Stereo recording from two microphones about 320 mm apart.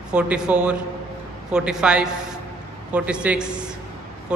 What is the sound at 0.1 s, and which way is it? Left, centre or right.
A man's voice, centre.